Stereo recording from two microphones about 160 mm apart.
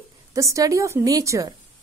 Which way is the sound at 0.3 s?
20° right (ahead or behind).